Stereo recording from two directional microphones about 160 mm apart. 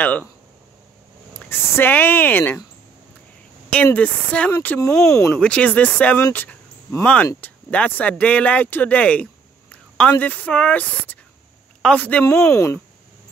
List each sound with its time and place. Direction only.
0.0 s speech: 10° left (ahead or behind)
1.4 s speech: 10° left (ahead or behind)
3.7 s speech: 10° left (ahead or behind)
5.3 s speech: 5° left (ahead or behind)